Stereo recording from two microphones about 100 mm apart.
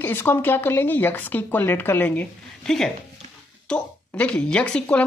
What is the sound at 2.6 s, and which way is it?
A woman's voice, 5° left (ahead or behind).